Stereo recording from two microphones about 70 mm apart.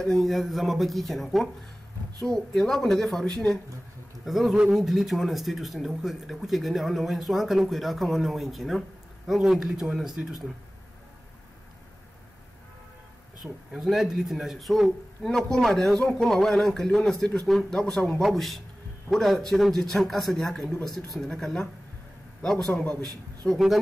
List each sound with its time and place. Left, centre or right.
0.0 s a man's voice: centre
4.2 s a man's voice: centre
13.4 s a man's voice: centre
22.7 s a man's voice: centre